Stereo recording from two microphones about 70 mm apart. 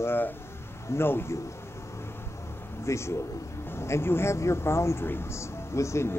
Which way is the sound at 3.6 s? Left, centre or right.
Left.